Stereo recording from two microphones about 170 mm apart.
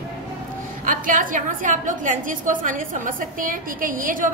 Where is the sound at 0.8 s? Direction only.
50° right (ahead or behind).